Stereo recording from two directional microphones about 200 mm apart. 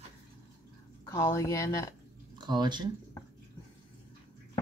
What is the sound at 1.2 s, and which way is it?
Speech, 15° left (ahead or behind).